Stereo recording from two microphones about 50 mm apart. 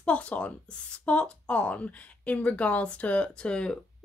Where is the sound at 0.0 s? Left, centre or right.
Left.